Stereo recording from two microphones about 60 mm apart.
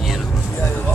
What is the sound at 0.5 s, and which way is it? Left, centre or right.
Vehicle, left.